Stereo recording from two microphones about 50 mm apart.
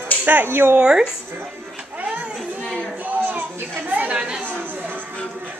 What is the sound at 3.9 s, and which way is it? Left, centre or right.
Chatter, right.